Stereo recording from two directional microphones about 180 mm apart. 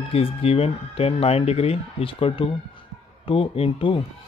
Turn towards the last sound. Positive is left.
turn(degrees=30)  # may be behind; listen again after turning